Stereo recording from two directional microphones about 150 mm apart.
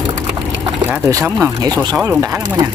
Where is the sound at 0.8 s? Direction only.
10° right (ahead or behind).